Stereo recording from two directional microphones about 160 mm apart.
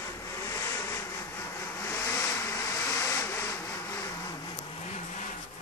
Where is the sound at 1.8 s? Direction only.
15° left (ahead or behind).